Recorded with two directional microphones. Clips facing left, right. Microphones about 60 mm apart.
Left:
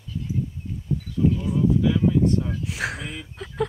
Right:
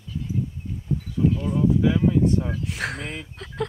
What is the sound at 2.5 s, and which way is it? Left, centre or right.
Speech, centre.